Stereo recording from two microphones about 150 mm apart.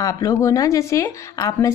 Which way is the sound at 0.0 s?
20° left (ahead or behind).